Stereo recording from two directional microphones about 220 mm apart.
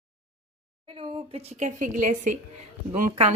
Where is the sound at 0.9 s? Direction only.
30° right (ahead or behind).